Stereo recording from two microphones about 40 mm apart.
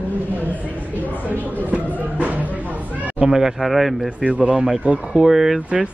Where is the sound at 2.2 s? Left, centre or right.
Right.